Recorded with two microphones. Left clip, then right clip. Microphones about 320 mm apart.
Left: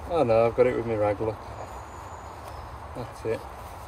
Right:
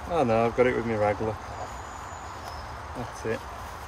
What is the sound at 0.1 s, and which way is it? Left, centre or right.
Speech, right.